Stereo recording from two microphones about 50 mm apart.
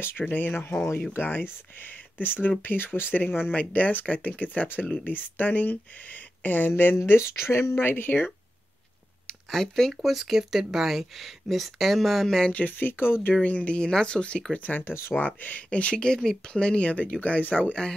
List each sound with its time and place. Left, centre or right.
0.2 s speech: left
3.5 s speech: left
7.2 s speech: left
9.3 s speech: centre
12.5 s speech: left
13.3 s speech: left
13.7 s speech: centre
14.9 s speech: left
15.1 s speech: left